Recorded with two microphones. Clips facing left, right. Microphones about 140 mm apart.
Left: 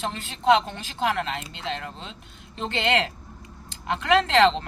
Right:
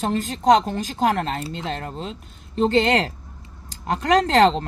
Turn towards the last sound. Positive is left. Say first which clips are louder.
# right 3 dB
turn(degrees=-40)  # may be behind; listen again after turning